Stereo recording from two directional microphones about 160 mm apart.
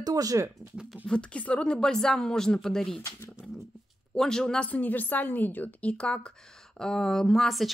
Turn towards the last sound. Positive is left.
turn(degrees=0)  # may be behind; listen again after turning